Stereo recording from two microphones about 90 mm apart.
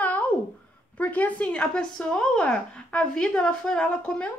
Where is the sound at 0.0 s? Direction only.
15° left (ahead or behind).